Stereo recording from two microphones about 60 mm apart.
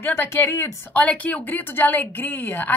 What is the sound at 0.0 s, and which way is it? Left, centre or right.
Speech, left.